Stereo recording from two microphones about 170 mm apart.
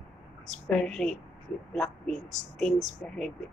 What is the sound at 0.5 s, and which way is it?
Speech, 5° left (ahead or behind).